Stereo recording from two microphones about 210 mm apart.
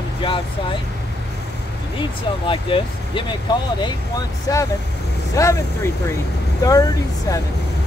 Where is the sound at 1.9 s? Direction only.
25° left (ahead or behind).